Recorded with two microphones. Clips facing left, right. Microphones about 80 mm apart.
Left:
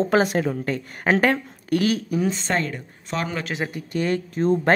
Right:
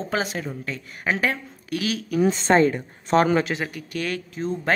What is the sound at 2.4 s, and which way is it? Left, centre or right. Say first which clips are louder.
Speech: right 7 dB; right.